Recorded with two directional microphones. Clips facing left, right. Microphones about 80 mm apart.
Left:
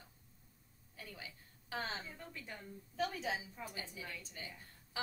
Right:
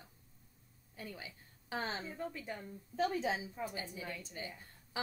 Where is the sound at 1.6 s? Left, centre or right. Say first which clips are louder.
Right 3 dB; right.